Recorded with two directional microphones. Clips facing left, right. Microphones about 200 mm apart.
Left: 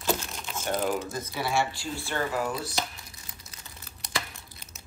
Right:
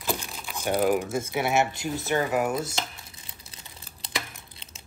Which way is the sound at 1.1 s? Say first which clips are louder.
Right 4 dB; 25° right (ahead or behind).